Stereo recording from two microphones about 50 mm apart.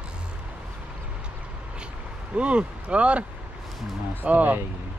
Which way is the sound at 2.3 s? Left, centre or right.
Right.